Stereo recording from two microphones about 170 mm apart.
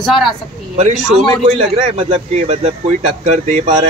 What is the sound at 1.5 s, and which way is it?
A man's voice, 40° right (ahead or behind).